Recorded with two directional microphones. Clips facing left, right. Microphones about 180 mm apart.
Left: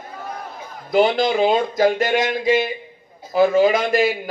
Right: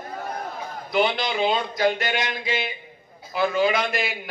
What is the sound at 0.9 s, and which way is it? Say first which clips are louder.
A man's voice: left 7 dB; 45° left (ahead or behind).